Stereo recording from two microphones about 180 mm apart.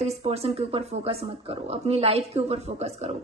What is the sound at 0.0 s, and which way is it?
Speech, 35° right (ahead or behind).